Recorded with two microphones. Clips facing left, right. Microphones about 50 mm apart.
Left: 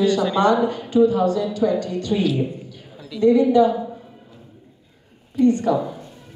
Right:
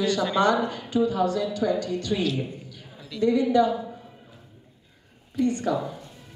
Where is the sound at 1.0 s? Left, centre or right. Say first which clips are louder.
Left 6 dB; left.